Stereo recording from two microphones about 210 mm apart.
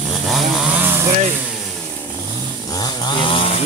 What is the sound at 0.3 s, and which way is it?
Chainsaw, 5° right (ahead or behind).